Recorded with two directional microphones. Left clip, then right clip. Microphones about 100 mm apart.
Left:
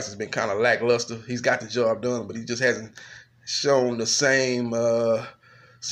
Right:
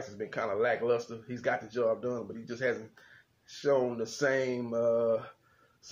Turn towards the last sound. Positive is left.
turn(degrees=10)  # may be behind; listen again after turning